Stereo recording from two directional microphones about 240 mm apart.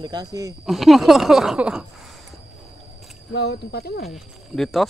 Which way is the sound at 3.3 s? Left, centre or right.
Left.